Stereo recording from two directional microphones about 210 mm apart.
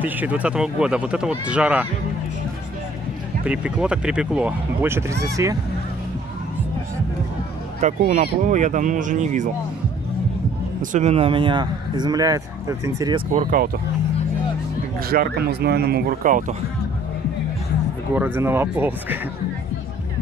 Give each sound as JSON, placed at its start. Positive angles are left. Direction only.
{"t": 0.0, "sound": "speech", "side_deg": -5}
{"t": 3.4, "sound": "speech", "side_deg": -5}
{"t": 7.8, "sound": "speech", "side_deg": -35}
{"t": 10.8, "sound": "speech", "side_deg": -35}
{"t": 13.3, "sound": "speech", "side_deg": -40}
{"t": 15.0, "sound": "speech", "side_deg": -45}
{"t": 18.1, "sound": "speech", "side_deg": -10}